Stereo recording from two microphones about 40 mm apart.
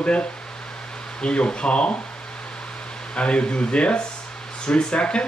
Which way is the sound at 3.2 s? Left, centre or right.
Left.